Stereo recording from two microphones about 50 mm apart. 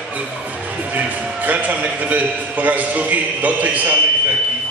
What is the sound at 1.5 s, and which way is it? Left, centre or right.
A man's voice, right.